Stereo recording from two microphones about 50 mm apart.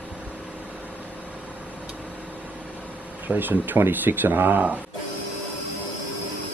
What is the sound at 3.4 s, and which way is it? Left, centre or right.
Speech, right.